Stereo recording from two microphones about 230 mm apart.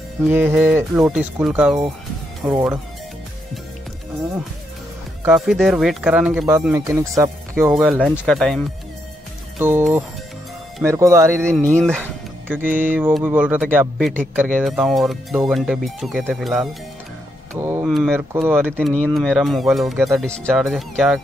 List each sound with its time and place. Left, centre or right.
0.3 s a man's voice: centre
5.2 s a man's voice: centre
7.7 s a man's voice: centre
9.6 s speech: centre
11.8 s music: centre
12.8 s a man's voice: centre
18.9 s a man's voice: centre